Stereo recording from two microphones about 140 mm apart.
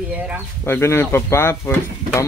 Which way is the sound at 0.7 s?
15° left (ahead or behind).